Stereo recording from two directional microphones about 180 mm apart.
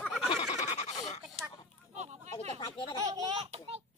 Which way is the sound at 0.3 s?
35° left (ahead or behind).